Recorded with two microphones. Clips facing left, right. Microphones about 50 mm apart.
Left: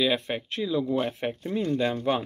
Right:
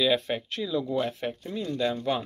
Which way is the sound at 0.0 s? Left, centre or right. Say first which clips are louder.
Right 1 dB; centre.